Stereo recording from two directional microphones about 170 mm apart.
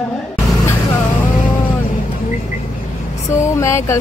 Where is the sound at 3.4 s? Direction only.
15° left (ahead or behind).